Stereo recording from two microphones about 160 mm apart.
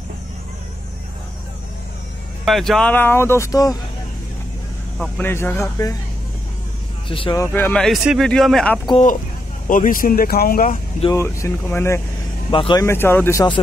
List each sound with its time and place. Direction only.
2.4 s speech: centre (ahead or behind); by 3.7 s 20° left (ahead or behind)
4.9 s speech: centre (ahead or behind)
5.2 s speech: 15° left (ahead or behind)
7.1 s speech: 35° left (ahead or behind)
7.3 s speech: 15° left (ahead or behind)
9.7 s speech: 60° left (ahead or behind)
11.1 s speech: 20° left (ahead or behind)
12.4 s speech: 30° left (ahead or behind)
12.8 s speech: 15° left (ahead or behind)